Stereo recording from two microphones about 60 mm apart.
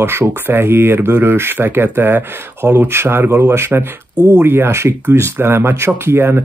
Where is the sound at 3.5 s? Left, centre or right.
Right.